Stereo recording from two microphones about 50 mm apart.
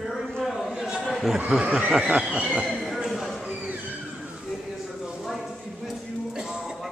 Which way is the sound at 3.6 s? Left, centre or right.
Right.